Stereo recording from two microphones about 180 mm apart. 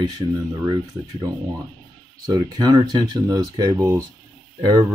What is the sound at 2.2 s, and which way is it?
Speech, 25° right (ahead or behind).